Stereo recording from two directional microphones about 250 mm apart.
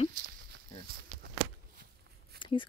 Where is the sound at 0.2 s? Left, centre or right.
Right.